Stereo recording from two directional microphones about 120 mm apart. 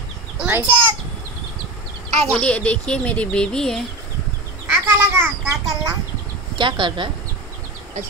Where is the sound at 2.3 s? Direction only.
10° left (ahead or behind).